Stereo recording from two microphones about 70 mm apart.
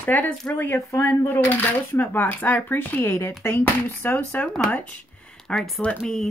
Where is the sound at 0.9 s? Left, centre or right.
Left.